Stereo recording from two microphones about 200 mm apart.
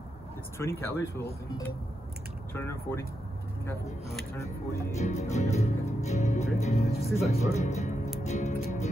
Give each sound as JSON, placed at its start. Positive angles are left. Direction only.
{"t": 0.6, "sound": "speech", "side_deg": 10}
{"t": 2.5, "sound": "speech", "side_deg": 10}
{"t": 4.3, "sound": "speech", "side_deg": 10}
{"t": 4.9, "sound": "speech", "side_deg": 35}